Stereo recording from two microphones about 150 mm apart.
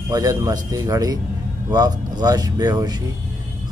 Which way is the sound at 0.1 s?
25° right (ahead or behind).